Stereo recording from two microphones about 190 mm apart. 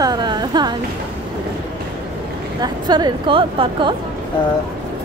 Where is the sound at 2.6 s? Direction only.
20° right (ahead or behind).